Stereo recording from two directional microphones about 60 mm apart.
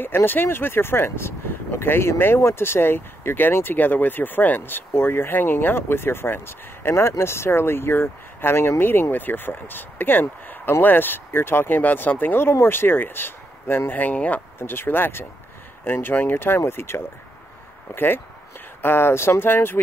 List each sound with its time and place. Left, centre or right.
0.0 s speech: left
14.6 s speech: left